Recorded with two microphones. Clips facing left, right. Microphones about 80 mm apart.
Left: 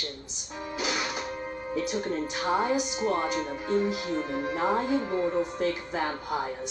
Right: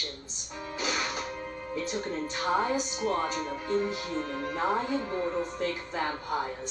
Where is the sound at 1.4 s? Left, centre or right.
Left.